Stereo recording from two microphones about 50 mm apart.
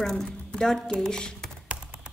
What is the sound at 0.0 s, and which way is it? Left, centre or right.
Speech, centre.